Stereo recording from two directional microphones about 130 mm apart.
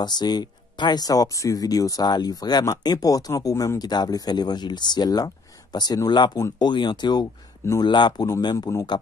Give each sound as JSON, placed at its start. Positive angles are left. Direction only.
{"t": 0.0, "sound": "speech", "side_deg": 35}